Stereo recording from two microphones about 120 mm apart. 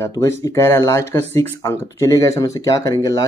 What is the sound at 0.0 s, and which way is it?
Speech, 25° left (ahead or behind).